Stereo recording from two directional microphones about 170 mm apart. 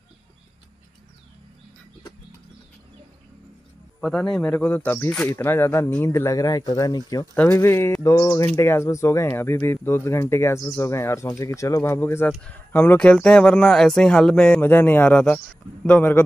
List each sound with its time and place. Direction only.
4.0 s speech: 5° left (ahead or behind)